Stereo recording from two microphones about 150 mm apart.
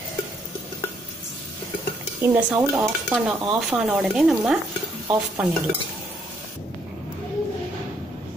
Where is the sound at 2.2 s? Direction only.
10° right (ahead or behind).